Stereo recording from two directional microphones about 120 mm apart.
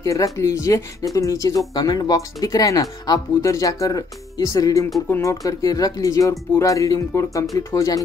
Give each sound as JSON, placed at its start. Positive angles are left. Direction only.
{"t": 0.0, "sound": "speech", "side_deg": 30}